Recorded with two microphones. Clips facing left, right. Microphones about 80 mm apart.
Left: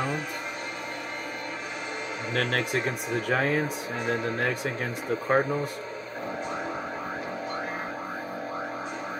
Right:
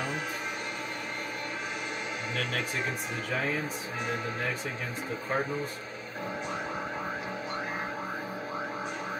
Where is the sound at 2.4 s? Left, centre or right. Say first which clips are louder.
Left 7 dB; left.